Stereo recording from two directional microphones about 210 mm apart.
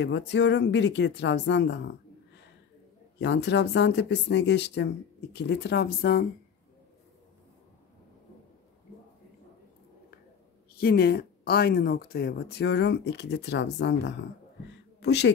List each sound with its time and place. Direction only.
0.0 s speech: 55° left (ahead or behind)
3.2 s speech: 55° left (ahead or behind)
10.8 s speech: 50° left (ahead or behind)